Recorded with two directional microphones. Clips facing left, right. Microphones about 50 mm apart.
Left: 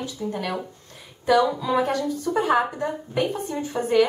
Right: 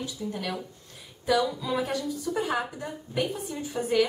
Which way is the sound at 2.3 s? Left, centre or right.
Left.